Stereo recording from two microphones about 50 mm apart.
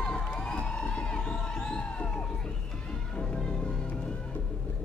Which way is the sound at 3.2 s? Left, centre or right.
Centre.